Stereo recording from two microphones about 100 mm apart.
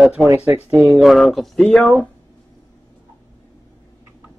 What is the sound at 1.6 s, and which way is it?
Speech, 10° left (ahead or behind).